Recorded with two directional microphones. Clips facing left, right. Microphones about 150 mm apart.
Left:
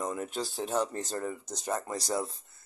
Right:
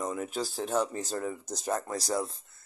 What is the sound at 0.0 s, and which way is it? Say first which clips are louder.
Speech: right 1 dB; centre (ahead or behind).